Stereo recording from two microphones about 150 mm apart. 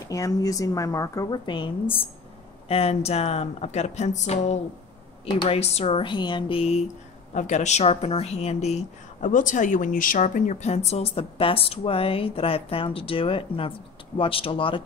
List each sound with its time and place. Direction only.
0.1 s a woman's voice: 20° left (ahead or behind); by 4.6 s 50° left (ahead or behind)
5.2 s speech: 35° left (ahead or behind)
5.6 s speech: 45° left (ahead or behind)
7.3 s a woman's voice: 50° left (ahead or behind); by 14.8 s 35° left (ahead or behind)